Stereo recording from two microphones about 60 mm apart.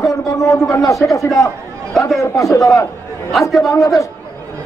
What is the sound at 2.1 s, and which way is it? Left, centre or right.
Speech, left.